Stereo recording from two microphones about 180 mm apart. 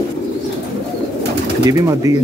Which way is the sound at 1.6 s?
20° right (ahead or behind).